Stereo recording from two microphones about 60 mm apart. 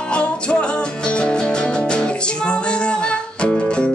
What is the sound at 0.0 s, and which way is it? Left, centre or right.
Music, centre.